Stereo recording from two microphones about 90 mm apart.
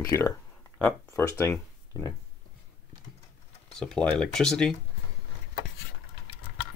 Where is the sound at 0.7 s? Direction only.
20° left (ahead or behind).